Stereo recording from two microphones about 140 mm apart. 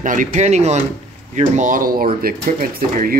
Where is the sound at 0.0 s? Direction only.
70° right (ahead or behind); by 0.7 s 55° right (ahead or behind).